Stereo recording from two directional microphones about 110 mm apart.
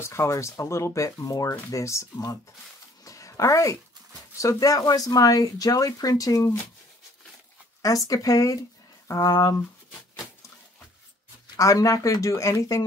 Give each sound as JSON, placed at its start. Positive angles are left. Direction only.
{"t": 0.0, "sound": "speech", "side_deg": 25}
{"t": 3.1, "sound": "a sound", "side_deg": 30}
{"t": 4.4, "sound": "speech", "side_deg": 30}
{"t": 7.8, "sound": "speech", "side_deg": 30}
{"t": 11.5, "sound": "speech", "side_deg": 30}